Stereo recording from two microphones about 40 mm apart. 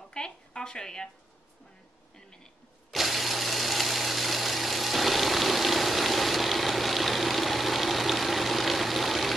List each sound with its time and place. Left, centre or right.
0.1 s speech: left
2.9 s tools: centre